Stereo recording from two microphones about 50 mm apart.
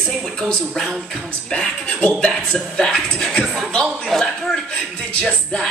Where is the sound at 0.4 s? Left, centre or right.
Centre.